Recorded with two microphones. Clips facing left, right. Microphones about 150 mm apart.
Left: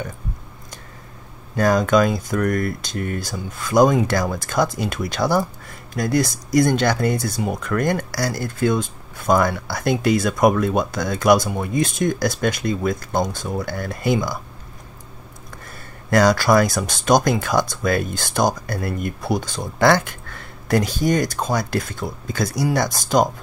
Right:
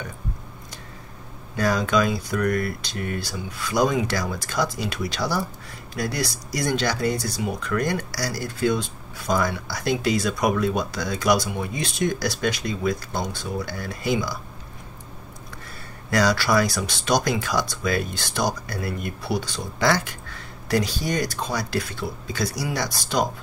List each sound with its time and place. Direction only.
1.6 s speech: 50° left (ahead or behind)
16.1 s speech: 50° left (ahead or behind)